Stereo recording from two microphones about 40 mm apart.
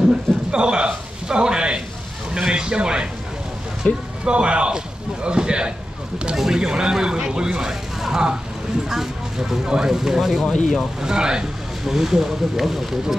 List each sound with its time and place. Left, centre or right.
0.1 s a man's voice: right
3.8 s speech: left
4.2 s a man's voice: right
8.8 s a sound: centre
9.7 s speech: centre
11.8 s speech: centre